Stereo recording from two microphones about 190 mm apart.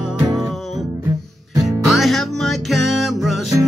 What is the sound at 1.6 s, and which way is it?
Music, centre (ahead or behind).